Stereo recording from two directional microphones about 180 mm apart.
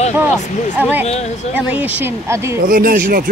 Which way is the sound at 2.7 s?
50° right (ahead or behind).